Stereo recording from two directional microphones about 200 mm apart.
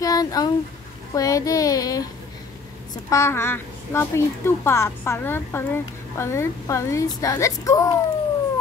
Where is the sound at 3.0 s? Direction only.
15° left (ahead or behind).